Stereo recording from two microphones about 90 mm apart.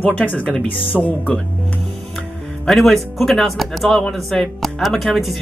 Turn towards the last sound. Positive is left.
turn(degrees=0)  # may be behind; listen again after turning